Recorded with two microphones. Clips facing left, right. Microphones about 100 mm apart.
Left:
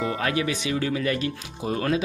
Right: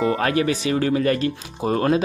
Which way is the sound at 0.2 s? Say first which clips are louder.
Right 5 dB; 45° right (ahead or behind).